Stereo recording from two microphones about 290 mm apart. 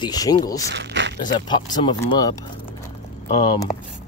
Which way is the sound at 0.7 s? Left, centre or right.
Right.